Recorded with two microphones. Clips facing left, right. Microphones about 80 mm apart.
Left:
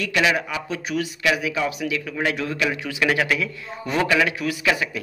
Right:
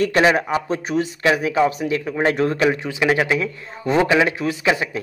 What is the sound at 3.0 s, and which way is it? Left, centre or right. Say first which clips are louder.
A man's voice: right 2 dB; centre.